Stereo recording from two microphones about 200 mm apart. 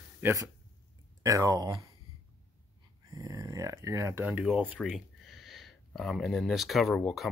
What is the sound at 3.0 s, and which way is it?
Speech, 20° right (ahead or behind).